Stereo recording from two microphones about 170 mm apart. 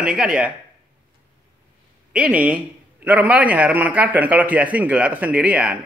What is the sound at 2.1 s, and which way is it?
A man's voice, 10° right (ahead or behind).